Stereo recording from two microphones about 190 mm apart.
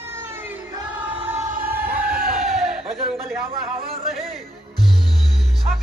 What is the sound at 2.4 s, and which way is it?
Crowd, centre (ahead or behind).